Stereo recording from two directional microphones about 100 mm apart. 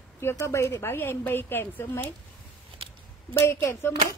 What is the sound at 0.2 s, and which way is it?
A woman's voice, 25° left (ahead or behind).